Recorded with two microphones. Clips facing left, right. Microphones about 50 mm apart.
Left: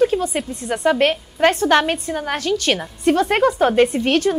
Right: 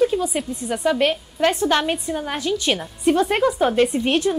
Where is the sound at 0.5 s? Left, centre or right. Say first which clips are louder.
Left 3 dB; left.